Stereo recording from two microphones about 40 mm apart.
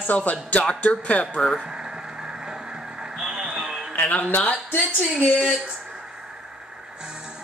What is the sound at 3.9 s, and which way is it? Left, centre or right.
Music, left.